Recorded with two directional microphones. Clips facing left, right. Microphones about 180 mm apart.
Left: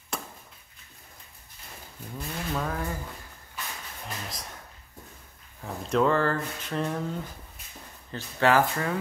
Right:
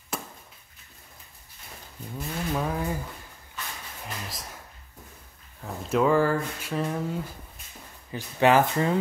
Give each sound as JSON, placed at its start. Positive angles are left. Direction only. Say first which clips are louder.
{"t": 2.1, "sound": "speech", "louder": "right 3 dB", "side_deg": -10}
{"t": 4.0, "sound": "a sound", "louder": "right 1 dB", "side_deg": 0}
{"t": 5.6, "sound": "speech", "louder": "even", "side_deg": 0}
{"t": 8.1, "sound": "speech", "louder": "right 2 dB", "side_deg": -15}